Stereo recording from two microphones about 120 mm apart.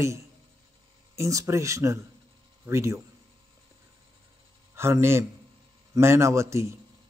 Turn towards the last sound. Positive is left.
turn(degrees=-25)  # may be behind; listen again after turning